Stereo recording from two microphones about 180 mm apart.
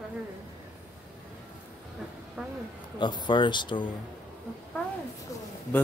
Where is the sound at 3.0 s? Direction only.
25° left (ahead or behind).